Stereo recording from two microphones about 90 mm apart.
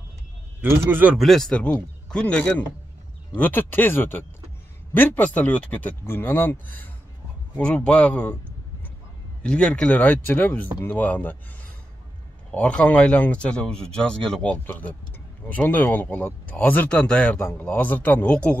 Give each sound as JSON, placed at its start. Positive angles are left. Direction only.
{"t": 0.6, "sound": "a man's voice", "side_deg": -25}
{"t": 1.1, "sound": "speech", "side_deg": 0}
{"t": 9.4, "sound": "speech", "side_deg": 10}
{"t": 12.4, "sound": "speech", "side_deg": 15}
{"t": 17.4, "sound": "speech", "side_deg": 25}